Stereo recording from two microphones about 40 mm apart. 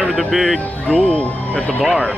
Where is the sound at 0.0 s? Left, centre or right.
Centre.